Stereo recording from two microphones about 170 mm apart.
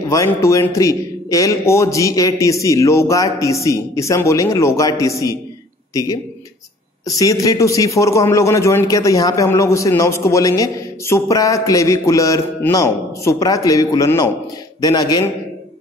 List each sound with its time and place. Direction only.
0.1 s a man's voice: 15° left (ahead or behind)
7.1 s a man's voice: 20° left (ahead or behind)